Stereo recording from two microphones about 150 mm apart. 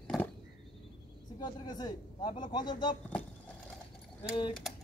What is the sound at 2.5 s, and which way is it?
Speech, 30° left (ahead or behind).